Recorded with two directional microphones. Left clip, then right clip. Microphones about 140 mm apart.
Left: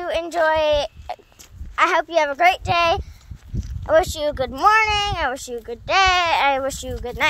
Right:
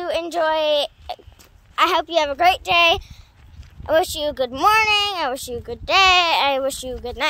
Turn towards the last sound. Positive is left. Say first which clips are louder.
# even
turn(degrees=-5)  # may be behind; listen again after turning